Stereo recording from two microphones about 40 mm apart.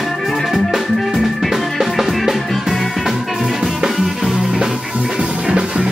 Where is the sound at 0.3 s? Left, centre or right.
Centre.